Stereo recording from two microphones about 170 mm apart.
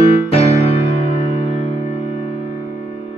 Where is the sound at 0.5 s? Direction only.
35° left (ahead or behind).